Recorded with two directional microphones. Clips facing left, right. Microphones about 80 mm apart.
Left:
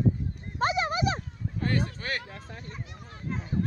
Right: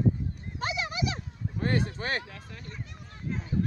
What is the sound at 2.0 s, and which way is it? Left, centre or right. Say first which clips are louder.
Speech: right 2 dB; right.